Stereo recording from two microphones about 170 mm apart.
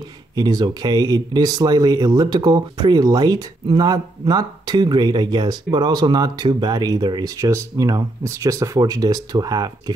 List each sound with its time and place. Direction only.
0.4 s speech: 25° right (ahead or behind)